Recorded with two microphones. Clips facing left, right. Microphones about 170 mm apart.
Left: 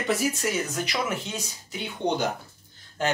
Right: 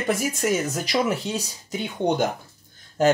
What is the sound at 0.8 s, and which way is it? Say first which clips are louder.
Speech: right 6 dB; 35° right (ahead or behind).